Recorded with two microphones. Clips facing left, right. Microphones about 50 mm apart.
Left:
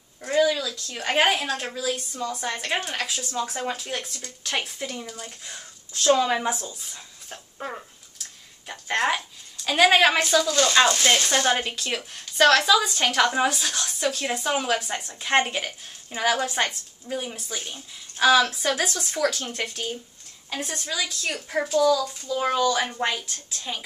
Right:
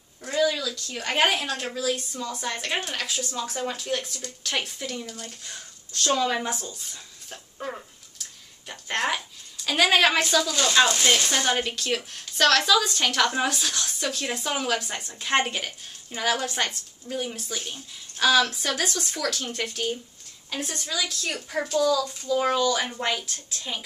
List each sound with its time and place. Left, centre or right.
0.6 s speech: centre
1.3 s a woman's voice: centre